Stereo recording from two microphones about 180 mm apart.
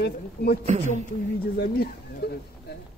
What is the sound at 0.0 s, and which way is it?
Speech, 60° left (ahead or behind).